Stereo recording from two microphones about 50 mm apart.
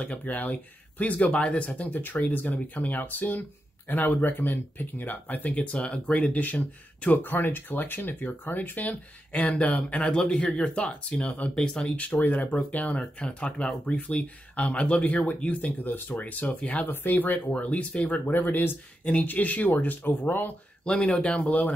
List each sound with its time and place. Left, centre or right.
0.0 s speech: left
1.9 s speech: left
10.1 s speech: centre
16.8 s speech: left
17.5 s speech: left
20.8 s speech: centre